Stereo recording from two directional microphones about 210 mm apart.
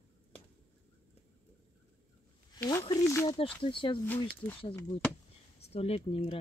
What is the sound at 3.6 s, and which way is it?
Speech, 25° left (ahead or behind).